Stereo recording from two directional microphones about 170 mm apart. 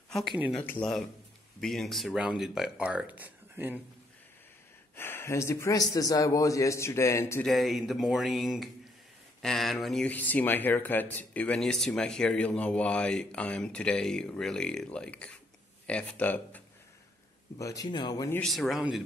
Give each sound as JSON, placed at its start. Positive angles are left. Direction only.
{"t": 0.4, "sound": "speech", "side_deg": 0}
{"t": 4.9, "sound": "a man's voice", "side_deg": 15}
{"t": 7.4, "sound": "a man's voice", "side_deg": 0}
{"t": 17.6, "sound": "speech", "side_deg": 20}
{"t": 18.4, "sound": "speech", "side_deg": 0}